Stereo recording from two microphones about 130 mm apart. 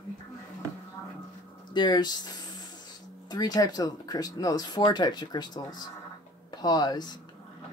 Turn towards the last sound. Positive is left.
turn(degrees=30)  # may be behind; listen again after turning